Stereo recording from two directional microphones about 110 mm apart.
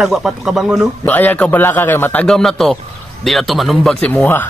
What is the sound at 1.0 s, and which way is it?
A man's voice, 15° left (ahead or behind).